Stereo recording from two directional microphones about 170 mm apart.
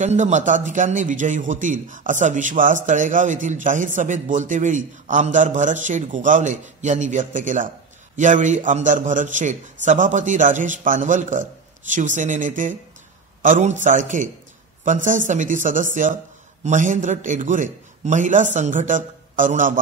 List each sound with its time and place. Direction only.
0.0 s a man's voice: 45° right (ahead or behind)